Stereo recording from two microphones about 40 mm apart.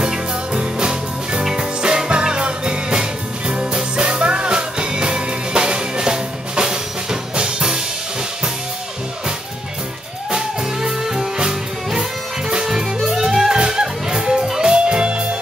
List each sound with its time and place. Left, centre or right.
0.0 s music: right
10.3 s music: centre